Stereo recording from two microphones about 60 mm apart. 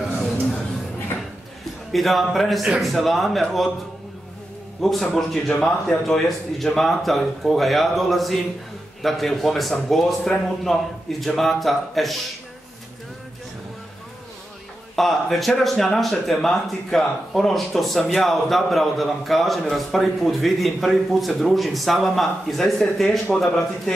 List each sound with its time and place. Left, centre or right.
1.9 s speech: centre
4.8 s a man's voice: centre
15.0 s speech: centre